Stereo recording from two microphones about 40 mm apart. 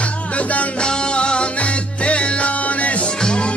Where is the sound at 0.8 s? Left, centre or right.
Left.